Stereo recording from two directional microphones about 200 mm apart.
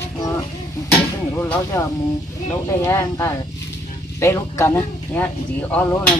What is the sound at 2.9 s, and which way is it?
Speech, 15° left (ahead or behind).